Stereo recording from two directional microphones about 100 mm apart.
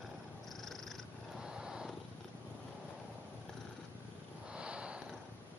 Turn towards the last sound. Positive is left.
turn(degrees=-10)  # may be behind; listen again after turning